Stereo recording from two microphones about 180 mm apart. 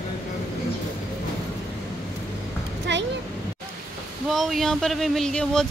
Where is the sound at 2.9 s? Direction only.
75° right (ahead or behind).